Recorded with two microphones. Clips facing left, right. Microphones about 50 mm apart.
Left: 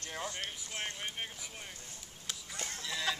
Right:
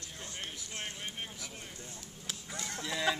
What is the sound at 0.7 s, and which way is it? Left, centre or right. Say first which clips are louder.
Speech: left 2 dB; left.